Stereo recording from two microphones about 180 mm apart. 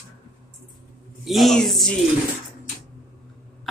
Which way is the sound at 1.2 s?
Centre (ahead or behind).